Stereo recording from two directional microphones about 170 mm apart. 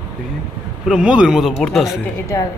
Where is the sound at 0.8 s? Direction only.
5° right (ahead or behind).